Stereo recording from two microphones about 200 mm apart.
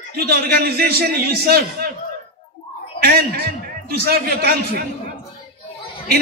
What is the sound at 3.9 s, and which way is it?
Speech, 50° right (ahead or behind).